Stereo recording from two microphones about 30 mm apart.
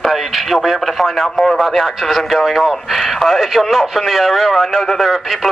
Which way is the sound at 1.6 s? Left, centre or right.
Centre.